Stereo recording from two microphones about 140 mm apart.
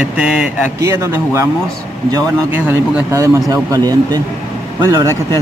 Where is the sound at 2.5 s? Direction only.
15° right (ahead or behind).